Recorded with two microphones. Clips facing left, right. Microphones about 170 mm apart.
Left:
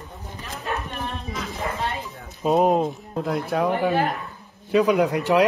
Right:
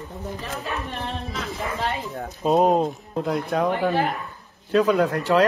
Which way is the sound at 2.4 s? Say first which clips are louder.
Even; centre (ahead or behind).